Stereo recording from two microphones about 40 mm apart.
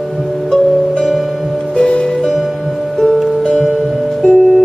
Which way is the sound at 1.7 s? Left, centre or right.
Left.